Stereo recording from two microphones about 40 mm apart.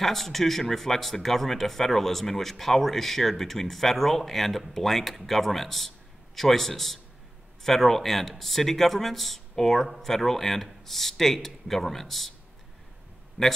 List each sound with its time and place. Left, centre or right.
0.0 s speech: centre
13.4 s speech: centre